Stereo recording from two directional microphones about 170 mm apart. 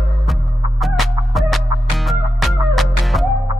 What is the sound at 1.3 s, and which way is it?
Music, centre (ahead or behind).